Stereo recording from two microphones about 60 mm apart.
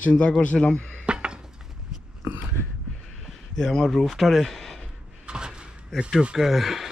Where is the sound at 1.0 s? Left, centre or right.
Centre.